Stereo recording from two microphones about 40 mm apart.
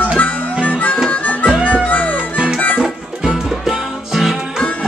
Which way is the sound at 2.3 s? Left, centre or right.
Centre.